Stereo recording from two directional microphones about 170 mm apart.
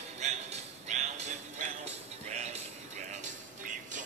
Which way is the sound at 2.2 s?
40° right (ahead or behind).